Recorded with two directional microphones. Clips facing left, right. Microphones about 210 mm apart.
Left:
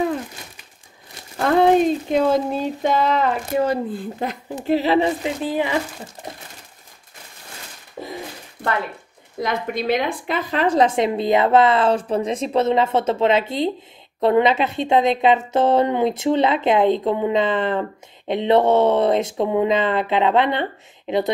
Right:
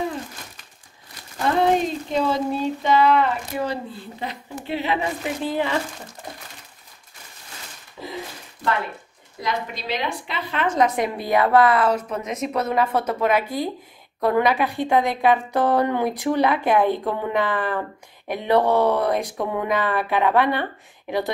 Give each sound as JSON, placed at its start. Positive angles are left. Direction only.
{"t": 2.1, "sound": "speech", "side_deg": 50}
{"t": 4.6, "sound": "speech", "side_deg": 40}
{"t": 5.4, "sound": "speech", "side_deg": 15}
{"t": 8.0, "sound": "a sound", "side_deg": 50}
{"t": 9.4, "sound": "a woman's voice", "side_deg": 55}